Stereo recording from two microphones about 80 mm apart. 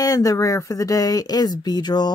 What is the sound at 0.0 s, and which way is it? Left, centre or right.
Speech, left.